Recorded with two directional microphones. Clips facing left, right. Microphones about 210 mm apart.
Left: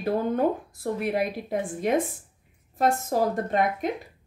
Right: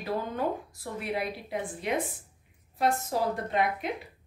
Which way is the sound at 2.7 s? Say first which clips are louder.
Left 4 dB; 45° left (ahead or behind).